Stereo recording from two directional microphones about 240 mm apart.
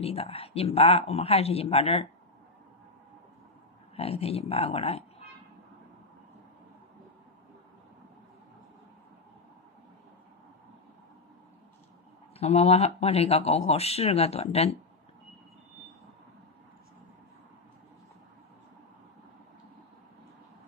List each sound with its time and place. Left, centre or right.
0.0 s speech: left
3.9 s speech: left
12.4 s speech: left